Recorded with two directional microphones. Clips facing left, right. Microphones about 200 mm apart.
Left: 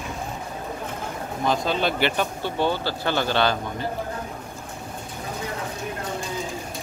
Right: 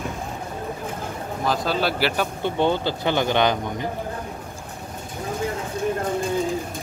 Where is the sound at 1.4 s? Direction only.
5° right (ahead or behind).